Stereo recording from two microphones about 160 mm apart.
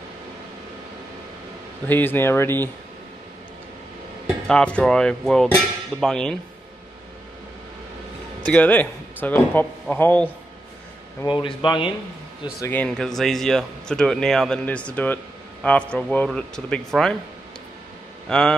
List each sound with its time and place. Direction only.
1.9 s speech: 10° left (ahead or behind)
4.5 s speech: 5° left (ahead or behind)
8.5 s speech: 10° left (ahead or behind)
11.2 s speech: 30° left (ahead or behind)
12.6 s speech: 10° left (ahead or behind)
18.3 s speech: 5° left (ahead or behind)